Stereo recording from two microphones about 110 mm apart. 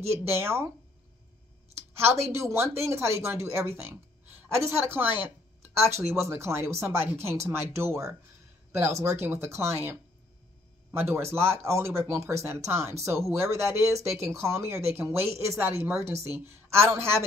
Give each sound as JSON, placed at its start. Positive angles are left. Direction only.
{"t": 0.1, "sound": "speech", "side_deg": -20}
{"t": 1.8, "sound": "a sound", "side_deg": -20}
{"t": 2.3, "sound": "speech", "side_deg": -25}